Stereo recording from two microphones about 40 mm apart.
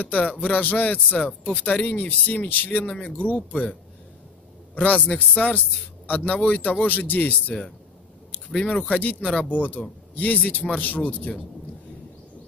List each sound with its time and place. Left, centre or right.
0.0 s speech: left
3.3 s speech: left
4.7 s speech: left
8.5 s speech: left